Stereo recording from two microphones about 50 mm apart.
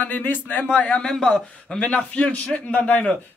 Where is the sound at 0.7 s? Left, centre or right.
Left.